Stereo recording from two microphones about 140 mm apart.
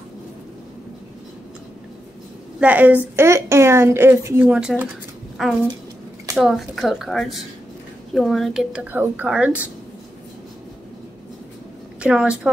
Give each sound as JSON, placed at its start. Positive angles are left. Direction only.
{"t": 2.6, "sound": "a woman's voice", "side_deg": -10}
{"t": 8.9, "sound": "a woman's voice", "side_deg": -10}
{"t": 12.0, "sound": "a woman's voice", "side_deg": -5}